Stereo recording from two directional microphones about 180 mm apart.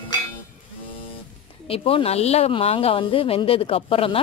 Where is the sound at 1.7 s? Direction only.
30° left (ahead or behind).